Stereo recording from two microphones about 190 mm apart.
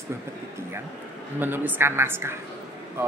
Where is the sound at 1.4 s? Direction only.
10° right (ahead or behind).